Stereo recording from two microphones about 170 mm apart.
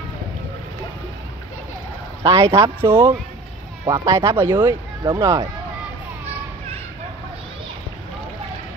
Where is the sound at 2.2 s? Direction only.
20° right (ahead or behind).